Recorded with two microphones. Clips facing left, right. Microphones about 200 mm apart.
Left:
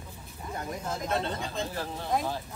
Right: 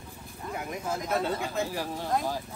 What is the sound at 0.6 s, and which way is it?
Speech, 10° right (ahead or behind).